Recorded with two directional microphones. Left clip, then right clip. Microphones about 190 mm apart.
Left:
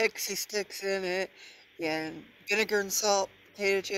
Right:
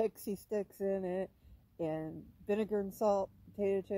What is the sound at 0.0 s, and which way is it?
Speech, 20° left (ahead or behind).